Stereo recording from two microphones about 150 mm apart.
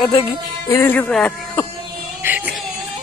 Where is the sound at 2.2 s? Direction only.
10° right (ahead or behind).